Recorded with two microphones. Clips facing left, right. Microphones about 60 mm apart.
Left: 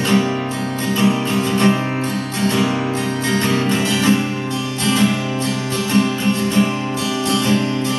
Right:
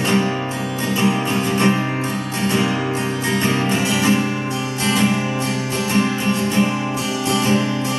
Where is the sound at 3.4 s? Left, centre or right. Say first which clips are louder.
Even; right.